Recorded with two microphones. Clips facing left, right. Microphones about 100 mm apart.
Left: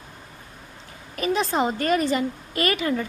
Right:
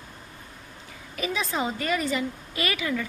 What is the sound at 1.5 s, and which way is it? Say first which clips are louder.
A woman's voice: left 4 dB; 45° left (ahead or behind).